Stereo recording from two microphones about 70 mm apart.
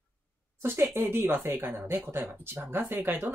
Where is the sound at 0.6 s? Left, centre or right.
Right.